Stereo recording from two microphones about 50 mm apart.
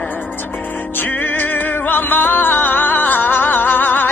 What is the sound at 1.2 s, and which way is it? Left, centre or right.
Music, left.